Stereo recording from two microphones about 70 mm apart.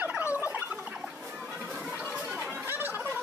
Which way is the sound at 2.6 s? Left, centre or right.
Right.